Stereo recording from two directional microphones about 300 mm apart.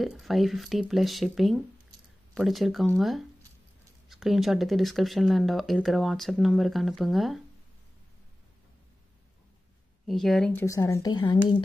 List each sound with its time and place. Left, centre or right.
0.0 s speech: centre
10.0 s speech: centre